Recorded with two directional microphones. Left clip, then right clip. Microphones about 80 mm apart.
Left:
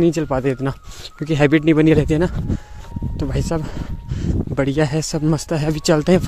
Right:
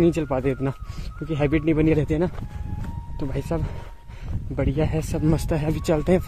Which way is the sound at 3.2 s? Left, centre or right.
Left.